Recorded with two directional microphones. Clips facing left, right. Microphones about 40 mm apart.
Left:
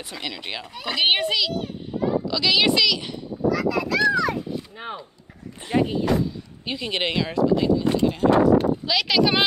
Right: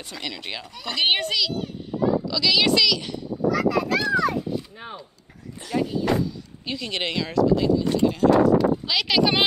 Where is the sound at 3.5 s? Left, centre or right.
Right.